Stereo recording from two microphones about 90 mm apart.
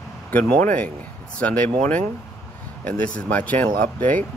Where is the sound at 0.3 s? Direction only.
20° left (ahead or behind).